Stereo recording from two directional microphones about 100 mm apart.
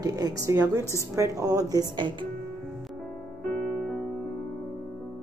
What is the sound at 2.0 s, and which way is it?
Speech, 50° right (ahead or behind).